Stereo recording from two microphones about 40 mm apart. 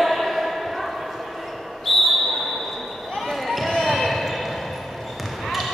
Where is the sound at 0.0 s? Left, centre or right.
Centre.